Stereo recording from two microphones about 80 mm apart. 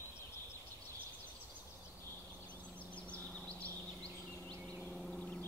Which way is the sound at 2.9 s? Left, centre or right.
Centre.